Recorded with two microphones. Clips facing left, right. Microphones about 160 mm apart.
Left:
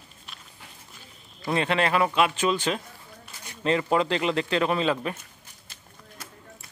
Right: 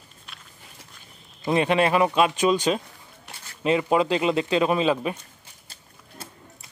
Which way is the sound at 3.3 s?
70° right (ahead or behind).